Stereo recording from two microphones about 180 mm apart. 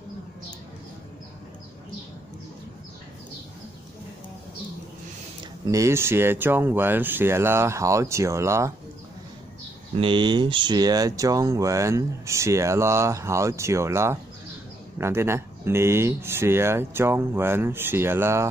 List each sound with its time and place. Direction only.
5.4 s speech: 20° right (ahead or behind)
9.9 s speech: 25° right (ahead or behind)